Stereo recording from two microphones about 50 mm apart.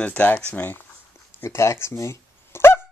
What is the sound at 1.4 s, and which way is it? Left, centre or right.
Speech, left.